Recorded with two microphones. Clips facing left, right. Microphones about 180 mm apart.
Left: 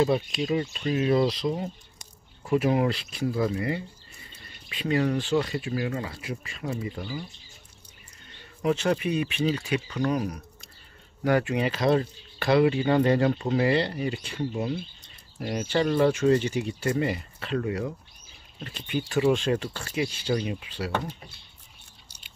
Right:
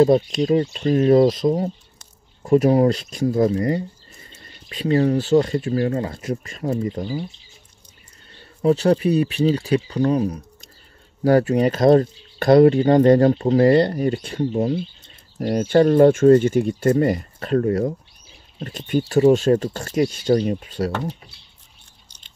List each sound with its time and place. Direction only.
0.0 s speech: 40° right (ahead or behind)
8.3 s speech: 35° right (ahead or behind)
22.0 s a sound: 10° left (ahead or behind)